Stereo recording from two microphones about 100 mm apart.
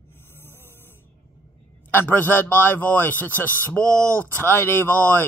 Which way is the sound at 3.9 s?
30° right (ahead or behind).